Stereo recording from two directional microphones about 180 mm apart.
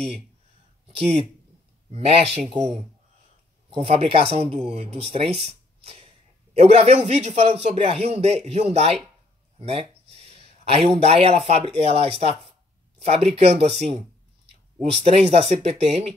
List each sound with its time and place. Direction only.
0.9 s speech: 35° right (ahead or behind)